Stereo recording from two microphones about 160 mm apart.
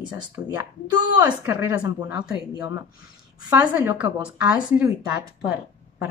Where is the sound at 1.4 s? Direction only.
15° right (ahead or behind).